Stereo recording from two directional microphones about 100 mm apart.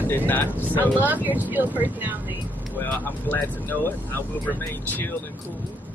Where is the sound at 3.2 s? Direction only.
20° left (ahead or behind).